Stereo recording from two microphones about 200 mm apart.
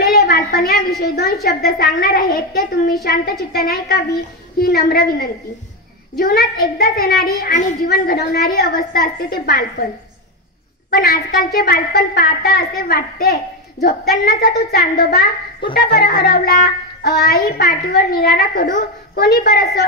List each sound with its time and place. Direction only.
0.0 s a woman's voice: 50° left (ahead or behind)
10.9 s a woman's voice: 50° left (ahead or behind)